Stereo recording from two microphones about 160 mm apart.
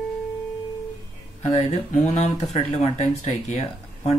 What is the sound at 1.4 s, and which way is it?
Speech, 45° left (ahead or behind).